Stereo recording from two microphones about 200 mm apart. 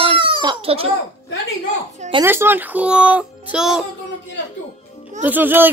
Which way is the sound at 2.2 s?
10° right (ahead or behind).